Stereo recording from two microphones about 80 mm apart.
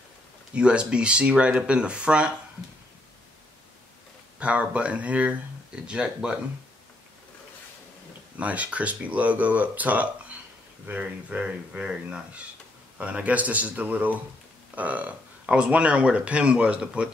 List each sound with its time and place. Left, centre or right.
0.6 s speech: centre
4.4 s speech: centre
8.4 s speech: centre